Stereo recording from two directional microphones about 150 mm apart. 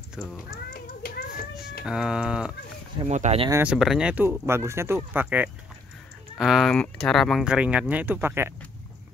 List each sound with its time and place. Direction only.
0.2 s speech: 5° right (ahead or behind)
1.0 s children playing: 80° left
1.9 s speech: 5° right (ahead or behind)
3.1 s speech: 50° right (ahead or behind)
3.6 s speech: centre (ahead or behind)
6.3 s speech: centre (ahead or behind); by 8.5 s 15° right (ahead or behind)